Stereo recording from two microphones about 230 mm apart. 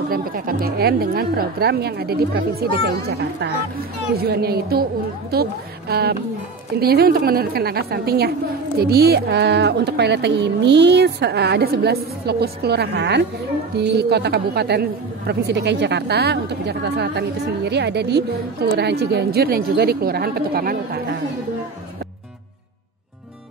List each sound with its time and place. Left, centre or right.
0.1 s a woman's voice: right
4.2 s a woman's voice: right